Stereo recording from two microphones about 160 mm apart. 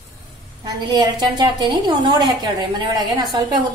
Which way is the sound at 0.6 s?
25° right (ahead or behind).